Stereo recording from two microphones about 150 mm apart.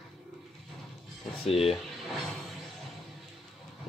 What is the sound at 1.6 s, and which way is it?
Speech, centre (ahead or behind).